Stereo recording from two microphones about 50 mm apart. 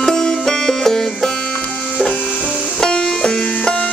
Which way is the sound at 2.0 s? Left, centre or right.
Left.